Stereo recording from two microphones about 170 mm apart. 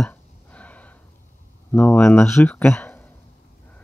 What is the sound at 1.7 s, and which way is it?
Speech, 10° left (ahead or behind).